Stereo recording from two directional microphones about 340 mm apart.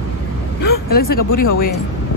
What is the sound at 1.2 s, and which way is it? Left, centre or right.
Speech, left.